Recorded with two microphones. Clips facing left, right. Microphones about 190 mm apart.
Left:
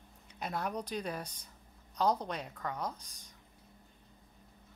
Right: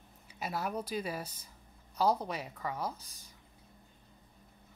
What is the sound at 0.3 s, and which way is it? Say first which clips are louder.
A woman's voice: right 1 dB; 5° right (ahead or behind).